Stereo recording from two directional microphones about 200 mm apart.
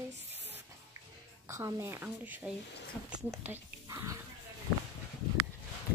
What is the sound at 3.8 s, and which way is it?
Pig, 15° right (ahead or behind).